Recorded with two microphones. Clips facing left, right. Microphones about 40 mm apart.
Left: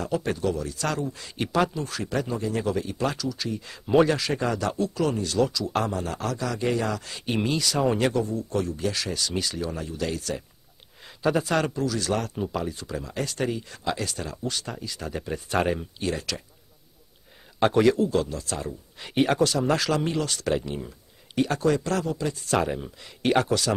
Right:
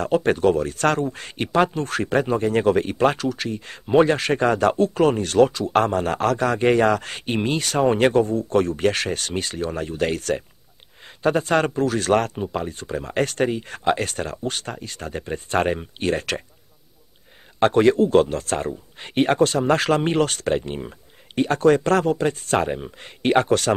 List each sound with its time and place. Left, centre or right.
0.0 s speech: right
17.6 s speech: right
22.7 s speech: right
22.9 s speech: right